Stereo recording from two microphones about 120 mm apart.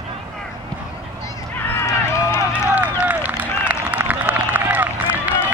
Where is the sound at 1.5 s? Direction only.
20° left (ahead or behind).